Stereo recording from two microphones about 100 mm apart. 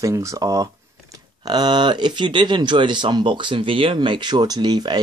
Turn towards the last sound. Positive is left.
turn(degrees=-45)  # may be behind; listen again after turning